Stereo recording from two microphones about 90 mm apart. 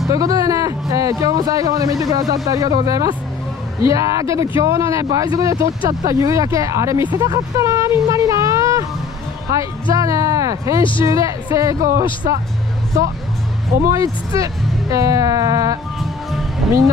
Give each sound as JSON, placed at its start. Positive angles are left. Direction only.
{"t": 0.1, "sound": "speech", "side_deg": -40}
{"t": 10.8, "sound": "speech", "side_deg": 70}
{"t": 11.1, "sound": "speech", "side_deg": -40}
{"t": 13.8, "sound": "speech", "side_deg": -40}
{"t": 16.0, "sound": "music", "side_deg": 0}